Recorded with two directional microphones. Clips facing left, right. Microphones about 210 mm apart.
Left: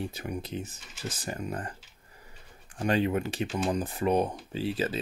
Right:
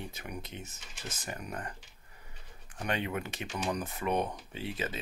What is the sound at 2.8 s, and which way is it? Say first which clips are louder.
Speech: left 8 dB; 35° left (ahead or behind).